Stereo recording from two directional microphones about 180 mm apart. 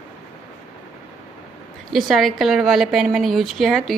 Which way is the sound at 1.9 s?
Centre (ahead or behind).